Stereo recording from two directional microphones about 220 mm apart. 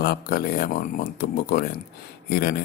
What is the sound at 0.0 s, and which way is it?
Speech, 45° left (ahead or behind).